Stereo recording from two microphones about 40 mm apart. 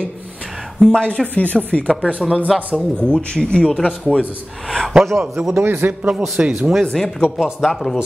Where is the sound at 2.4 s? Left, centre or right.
Centre.